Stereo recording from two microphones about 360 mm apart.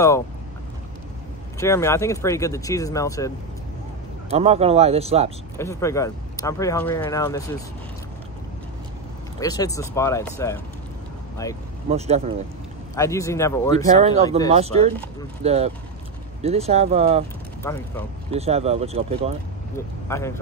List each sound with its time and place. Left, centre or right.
1.6 s speech: centre
4.3 s speech: centre
5.6 s speech: centre
9.4 s speech: centre
11.9 s speech: centre
12.9 s speech: centre
13.9 s speech: centre
17.6 s speech: centre
18.3 s speech: centre
20.1 s speech: centre